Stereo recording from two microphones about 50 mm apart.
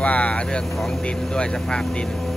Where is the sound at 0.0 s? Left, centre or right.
Left.